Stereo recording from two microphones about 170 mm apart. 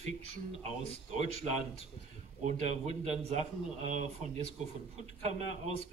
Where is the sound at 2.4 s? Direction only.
40° right (ahead or behind).